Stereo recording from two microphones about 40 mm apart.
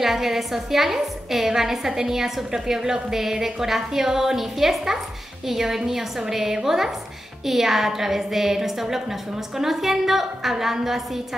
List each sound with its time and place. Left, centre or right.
0.0 s a woman's voice: centre